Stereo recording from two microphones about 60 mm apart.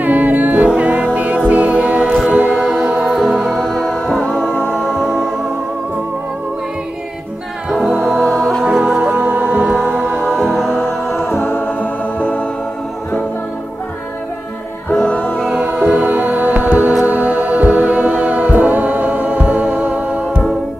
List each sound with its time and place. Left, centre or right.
0.0 s music: right
2.6 s music: centre
3.5 s music: centre
4.2 s music: centre
4.7 s music: centre
8.2 s music: centre
8.7 s music: centre
9.3 s music: right
10.4 s music: centre
10.8 s a capella: centre
11.3 s music: left
12.2 s music: left
15.0 s music: left
15.6 s music: right